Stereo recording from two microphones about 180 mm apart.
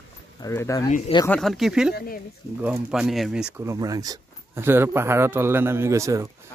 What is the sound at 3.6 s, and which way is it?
Speech, 20° right (ahead or behind).